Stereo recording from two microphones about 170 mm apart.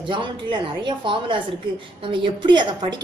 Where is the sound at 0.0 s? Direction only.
30° right (ahead or behind).